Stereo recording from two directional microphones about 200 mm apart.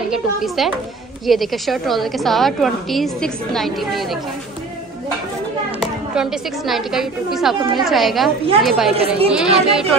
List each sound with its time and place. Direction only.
0.1 s a woman's voice: centre (ahead or behind)
5.8 s a woman's voice: centre (ahead or behind)
8.9 s a woman's voice: 30° right (ahead or behind)
9.3 s a woman's voice: 5° right (ahead or behind)